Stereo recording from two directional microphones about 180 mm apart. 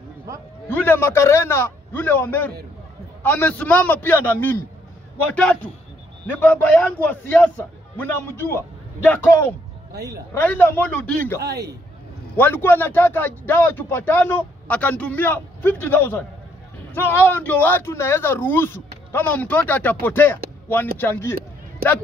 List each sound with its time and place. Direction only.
0.7 s speech: 10° left (ahead or behind)
11.4 s a man's voice: 70° right (ahead or behind)
12.4 s speech: 10° left (ahead or behind)